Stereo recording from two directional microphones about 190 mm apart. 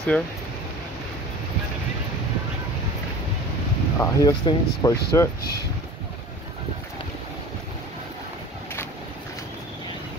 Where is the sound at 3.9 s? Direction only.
20° left (ahead or behind).